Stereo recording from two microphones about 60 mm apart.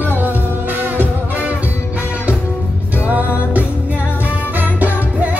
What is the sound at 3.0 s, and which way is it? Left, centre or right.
Music, right.